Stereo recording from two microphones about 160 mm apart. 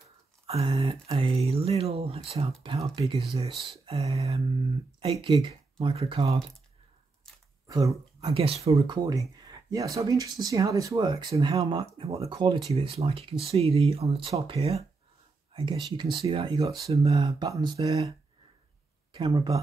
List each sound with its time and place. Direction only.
0.5 s speech: 35° right (ahead or behind)
7.6 s a sound: 25° right (ahead or behind)
7.9 s speech: 40° right (ahead or behind)
17.2 s speech: 25° right (ahead or behind)
19.1 s speech: 25° right (ahead or behind)